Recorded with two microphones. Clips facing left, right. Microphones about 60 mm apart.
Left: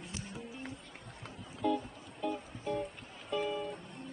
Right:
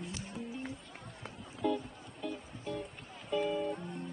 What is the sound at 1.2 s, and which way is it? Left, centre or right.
Music, centre.